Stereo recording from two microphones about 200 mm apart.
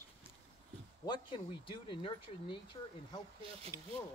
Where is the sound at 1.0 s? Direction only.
25° left (ahead or behind).